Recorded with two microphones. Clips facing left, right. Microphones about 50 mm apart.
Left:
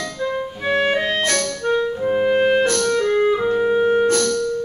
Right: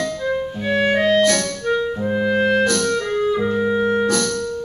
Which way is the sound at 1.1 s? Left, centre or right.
Left.